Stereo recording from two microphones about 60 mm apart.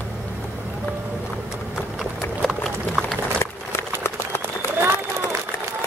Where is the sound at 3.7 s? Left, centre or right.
Left.